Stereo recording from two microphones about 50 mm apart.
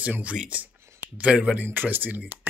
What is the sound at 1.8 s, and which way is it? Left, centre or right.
Speech, right.